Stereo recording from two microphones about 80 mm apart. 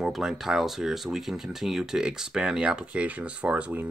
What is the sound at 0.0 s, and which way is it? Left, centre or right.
Speech, centre.